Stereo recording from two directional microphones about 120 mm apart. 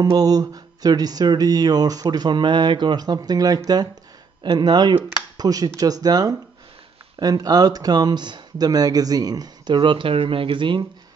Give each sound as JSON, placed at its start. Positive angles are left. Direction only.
{"t": 0.0, "sound": "music", "side_deg": -35}
{"t": 5.4, "sound": "speech", "side_deg": -30}
{"t": 5.8, "sound": "music", "side_deg": -30}